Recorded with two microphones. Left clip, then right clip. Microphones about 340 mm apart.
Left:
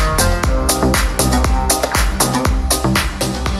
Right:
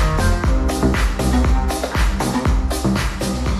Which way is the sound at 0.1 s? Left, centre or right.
Left.